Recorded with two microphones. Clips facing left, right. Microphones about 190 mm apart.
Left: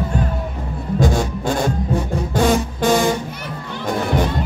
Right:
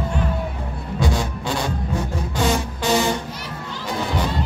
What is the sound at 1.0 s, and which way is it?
Heart sounds, 45° left (ahead or behind).